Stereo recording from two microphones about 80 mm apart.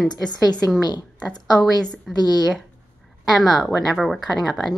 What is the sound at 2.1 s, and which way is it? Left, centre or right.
Speech, left.